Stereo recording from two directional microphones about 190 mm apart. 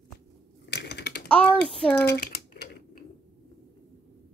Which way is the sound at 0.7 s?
65° left (ahead or behind).